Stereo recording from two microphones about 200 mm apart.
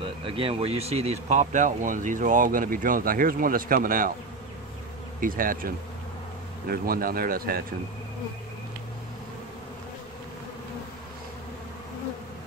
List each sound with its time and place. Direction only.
0.2 s speech: 25° right (ahead or behind); by 4.1 s 45° right (ahead or behind)
5.2 s speech: 45° right (ahead or behind)
6.7 s speech: 45° right (ahead or behind)